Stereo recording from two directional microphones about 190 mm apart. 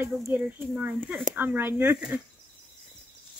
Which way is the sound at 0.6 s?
Centre (ahead or behind).